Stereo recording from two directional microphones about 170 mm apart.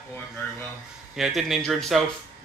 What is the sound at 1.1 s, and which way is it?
Speech, centre (ahead or behind).